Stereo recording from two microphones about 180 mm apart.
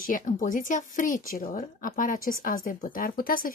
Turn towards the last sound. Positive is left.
turn(degrees=50)  # may be behind; listen again after turning